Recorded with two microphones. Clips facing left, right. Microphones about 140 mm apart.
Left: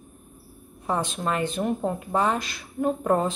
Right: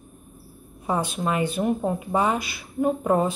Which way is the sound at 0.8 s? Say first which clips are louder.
Right 1 dB; 5° right (ahead or behind).